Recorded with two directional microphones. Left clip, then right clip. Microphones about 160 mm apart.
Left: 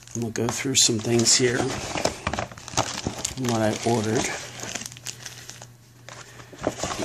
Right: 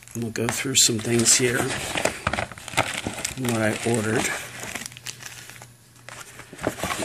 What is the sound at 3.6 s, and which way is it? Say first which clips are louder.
Speech: even; centre (ahead or behind).